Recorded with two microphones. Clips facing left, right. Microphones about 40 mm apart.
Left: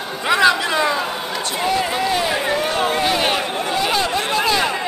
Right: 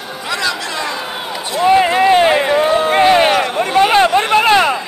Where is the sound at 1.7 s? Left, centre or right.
Right.